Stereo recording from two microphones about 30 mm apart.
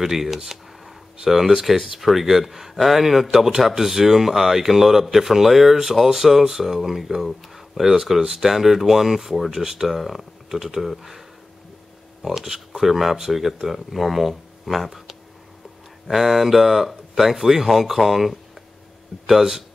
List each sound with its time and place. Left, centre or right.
0.0 s speech: centre
0.5 s a sound: centre
1.6 s speech: centre
9.8 s speech: centre
12.4 s speech: centre